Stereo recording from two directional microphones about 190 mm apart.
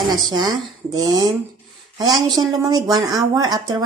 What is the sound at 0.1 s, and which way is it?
A woman's voice, 20° right (ahead or behind).